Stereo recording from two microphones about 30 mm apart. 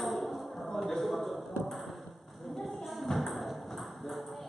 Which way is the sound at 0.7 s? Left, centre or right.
Centre.